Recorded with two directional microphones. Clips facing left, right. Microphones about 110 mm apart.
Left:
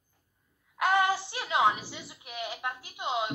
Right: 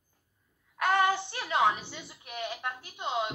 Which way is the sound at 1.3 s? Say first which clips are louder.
Left 1 dB; 15° left (ahead or behind).